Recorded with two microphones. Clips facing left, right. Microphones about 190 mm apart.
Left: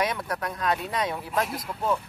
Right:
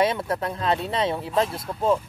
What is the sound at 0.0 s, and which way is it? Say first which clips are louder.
Speech: right 5 dB; 25° right (ahead or behind).